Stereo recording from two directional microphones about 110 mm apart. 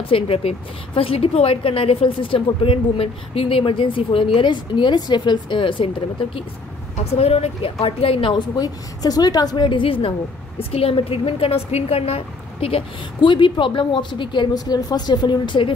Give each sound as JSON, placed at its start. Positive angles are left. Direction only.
{"t": 0.0, "sound": "speech", "side_deg": 60}
{"t": 7.0, "sound": "a woman's voice", "side_deg": 70}